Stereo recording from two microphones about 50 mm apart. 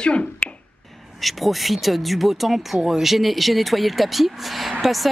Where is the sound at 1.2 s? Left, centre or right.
Centre.